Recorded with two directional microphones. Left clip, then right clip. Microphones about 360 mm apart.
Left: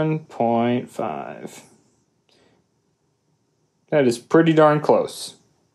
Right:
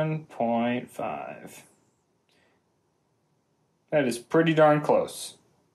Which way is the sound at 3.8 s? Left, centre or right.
Left.